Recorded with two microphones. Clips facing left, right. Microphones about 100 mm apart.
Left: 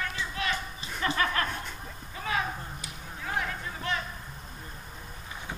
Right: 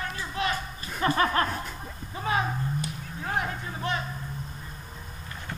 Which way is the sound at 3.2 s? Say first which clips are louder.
Right 2 dB; 25° right (ahead or behind).